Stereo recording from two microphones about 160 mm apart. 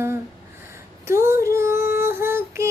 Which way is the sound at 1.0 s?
15° right (ahead or behind).